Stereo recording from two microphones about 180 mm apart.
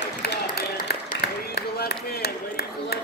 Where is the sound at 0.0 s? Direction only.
65° left (ahead or behind).